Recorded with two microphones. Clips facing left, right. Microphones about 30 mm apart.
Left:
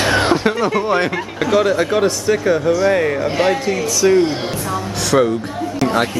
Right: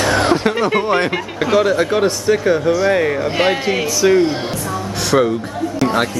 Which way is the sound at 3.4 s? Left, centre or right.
Right.